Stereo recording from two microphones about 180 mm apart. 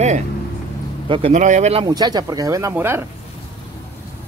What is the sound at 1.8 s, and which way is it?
Speech, 20° right (ahead or behind).